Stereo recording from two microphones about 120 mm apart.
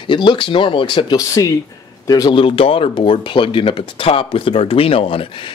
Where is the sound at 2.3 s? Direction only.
50° left (ahead or behind).